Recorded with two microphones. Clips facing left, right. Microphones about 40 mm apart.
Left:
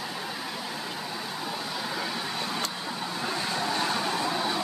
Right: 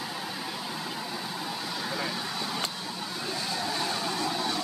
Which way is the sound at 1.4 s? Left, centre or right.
Centre.